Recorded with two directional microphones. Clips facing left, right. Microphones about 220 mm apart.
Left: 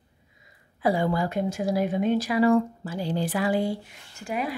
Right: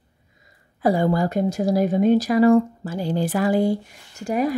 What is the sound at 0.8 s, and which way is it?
Speech, 45° right (ahead or behind).